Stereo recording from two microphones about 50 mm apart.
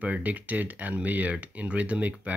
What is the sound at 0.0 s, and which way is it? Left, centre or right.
Speech, right.